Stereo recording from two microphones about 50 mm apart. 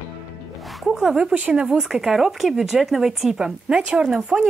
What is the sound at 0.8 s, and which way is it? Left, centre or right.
Speech, centre.